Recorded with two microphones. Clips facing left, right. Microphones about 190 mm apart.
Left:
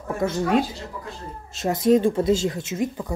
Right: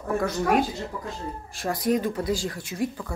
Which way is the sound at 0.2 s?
25° left (ahead or behind).